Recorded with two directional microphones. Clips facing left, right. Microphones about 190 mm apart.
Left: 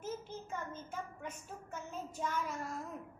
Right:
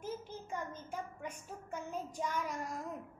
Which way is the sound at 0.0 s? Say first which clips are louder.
Even; 15° right (ahead or behind).